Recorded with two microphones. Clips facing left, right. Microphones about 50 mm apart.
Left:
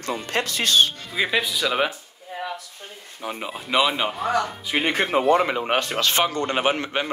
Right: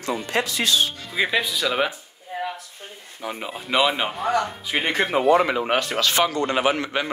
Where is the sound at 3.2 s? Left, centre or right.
Centre.